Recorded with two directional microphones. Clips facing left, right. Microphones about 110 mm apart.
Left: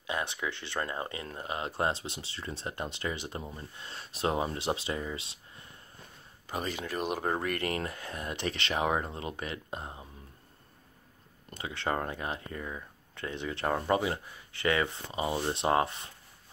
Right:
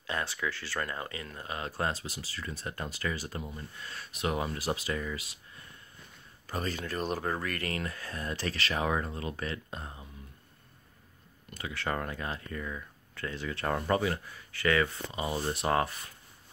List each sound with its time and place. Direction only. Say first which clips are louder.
0.0 s speech: even; 20° left (ahead or behind)
6.5 s speech: even; 15° left (ahead or behind)
11.5 s speech: left 2 dB; 25° left (ahead or behind)